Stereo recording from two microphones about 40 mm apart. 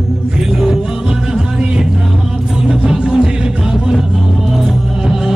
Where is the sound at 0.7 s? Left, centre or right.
Centre.